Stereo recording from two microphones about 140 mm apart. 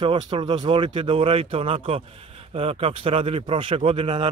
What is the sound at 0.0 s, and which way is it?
Speech, 35° right (ahead or behind).